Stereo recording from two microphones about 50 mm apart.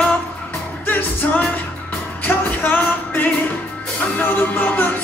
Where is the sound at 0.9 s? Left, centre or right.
Left.